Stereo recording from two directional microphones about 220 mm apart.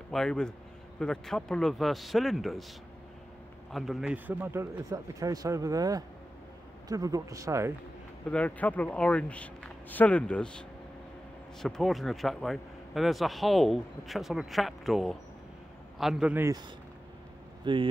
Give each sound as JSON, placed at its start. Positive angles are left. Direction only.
{"t": 0.1, "sound": "a man's voice", "side_deg": 5}
{"t": 3.7, "sound": "a man's voice", "side_deg": 0}
{"t": 8.3, "sound": "a man's voice", "side_deg": 5}
{"t": 11.6, "sound": "a man's voice", "side_deg": 0}
{"t": 17.6, "sound": "speech", "side_deg": -20}